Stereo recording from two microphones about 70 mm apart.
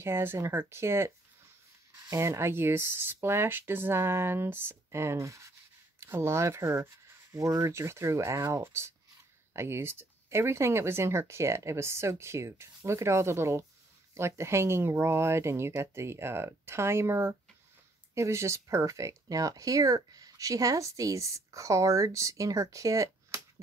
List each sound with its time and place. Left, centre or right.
0.0 s speech: right
5.9 s speech: right
7.3 s speech: right